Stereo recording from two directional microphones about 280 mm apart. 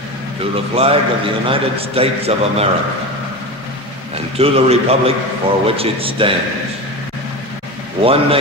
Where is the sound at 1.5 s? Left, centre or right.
Right.